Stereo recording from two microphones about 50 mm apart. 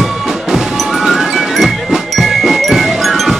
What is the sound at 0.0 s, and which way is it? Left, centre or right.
Music, centre.